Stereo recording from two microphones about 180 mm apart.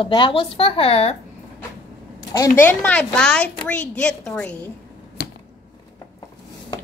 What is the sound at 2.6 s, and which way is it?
A woman's voice, 10° left (ahead or behind).